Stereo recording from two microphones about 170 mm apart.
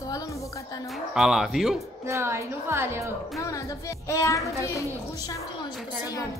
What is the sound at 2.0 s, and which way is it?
A woman's voice, 15° right (ahead or behind).